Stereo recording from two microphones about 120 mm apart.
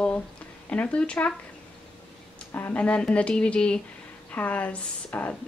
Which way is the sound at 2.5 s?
15° left (ahead or behind).